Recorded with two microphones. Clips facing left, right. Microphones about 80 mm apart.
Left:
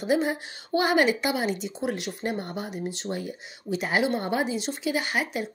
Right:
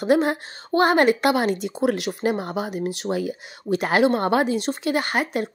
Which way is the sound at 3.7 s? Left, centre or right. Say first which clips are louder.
Right 6 dB; right.